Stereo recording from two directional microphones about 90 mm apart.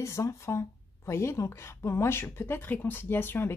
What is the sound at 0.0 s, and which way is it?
Speech, 30° left (ahead or behind).